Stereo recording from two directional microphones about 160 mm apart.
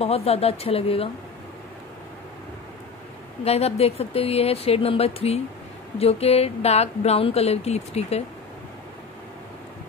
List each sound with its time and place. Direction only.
0.0 s speech: 40° left (ahead or behind)
3.4 s speech: 40° left (ahead or behind)